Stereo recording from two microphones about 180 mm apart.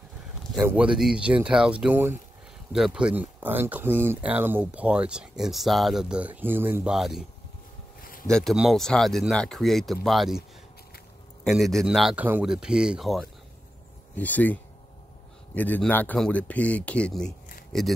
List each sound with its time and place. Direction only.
0.7 s speech: 5° right (ahead or behind)
8.0 s a sound: 50° left (ahead or behind)
8.3 s speech: 5° left (ahead or behind)
11.4 s speech: centre (ahead or behind)